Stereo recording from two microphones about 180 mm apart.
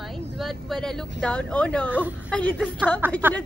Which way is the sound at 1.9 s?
10° right (ahead or behind).